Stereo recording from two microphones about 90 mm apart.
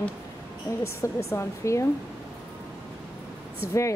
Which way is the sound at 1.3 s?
35° left (ahead or behind).